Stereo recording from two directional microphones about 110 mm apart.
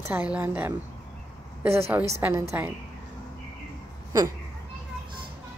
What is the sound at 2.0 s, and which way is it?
Speech, 25° right (ahead or behind).